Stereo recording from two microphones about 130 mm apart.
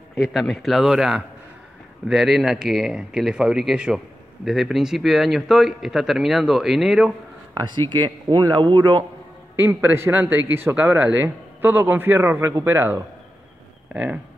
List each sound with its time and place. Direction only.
0.1 s speech: 5° right (ahead or behind)
7.5 s a man's voice: 35° right (ahead or behind)
9.6 s speech: 15° right (ahead or behind)